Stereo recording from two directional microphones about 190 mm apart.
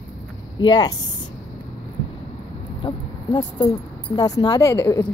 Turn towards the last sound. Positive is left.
turn(degrees=10)  # may be behind; listen again after turning